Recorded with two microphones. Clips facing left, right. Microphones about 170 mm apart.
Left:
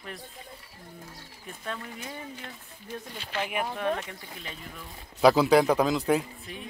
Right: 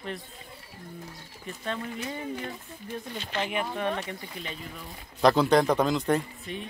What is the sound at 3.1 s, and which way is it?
Speech, 5° left (ahead or behind).